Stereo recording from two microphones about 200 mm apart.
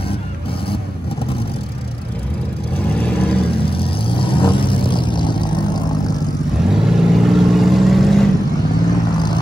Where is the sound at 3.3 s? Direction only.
25° left (ahead or behind).